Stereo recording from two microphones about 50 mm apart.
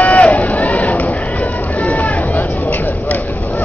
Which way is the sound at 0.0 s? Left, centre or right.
Left.